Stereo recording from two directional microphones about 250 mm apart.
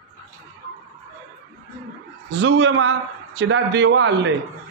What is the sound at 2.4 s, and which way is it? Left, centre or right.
A man's voice, right.